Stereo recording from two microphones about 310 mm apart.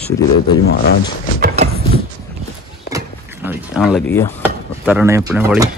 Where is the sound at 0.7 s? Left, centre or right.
Left.